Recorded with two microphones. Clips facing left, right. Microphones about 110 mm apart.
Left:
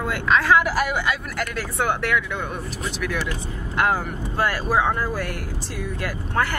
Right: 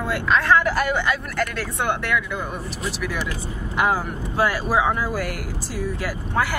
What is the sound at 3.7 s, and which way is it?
Speech, 5° right (ahead or behind).